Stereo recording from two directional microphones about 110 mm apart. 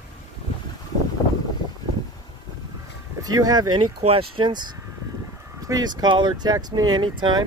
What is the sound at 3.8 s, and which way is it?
Speech, 55° right (ahead or behind).